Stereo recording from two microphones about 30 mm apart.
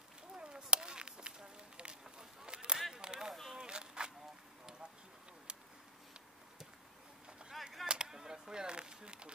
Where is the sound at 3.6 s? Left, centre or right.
Right.